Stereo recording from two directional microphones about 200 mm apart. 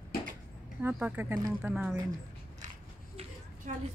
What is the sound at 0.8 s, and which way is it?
Speech, 5° right (ahead or behind).